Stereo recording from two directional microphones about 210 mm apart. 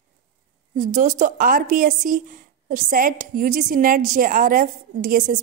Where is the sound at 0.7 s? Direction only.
40° right (ahead or behind).